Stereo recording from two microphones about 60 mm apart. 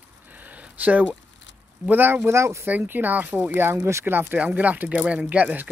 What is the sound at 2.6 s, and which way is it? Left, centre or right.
Speech, right.